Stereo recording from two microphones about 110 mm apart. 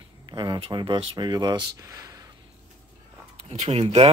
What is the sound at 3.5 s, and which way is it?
Speech, 80° right.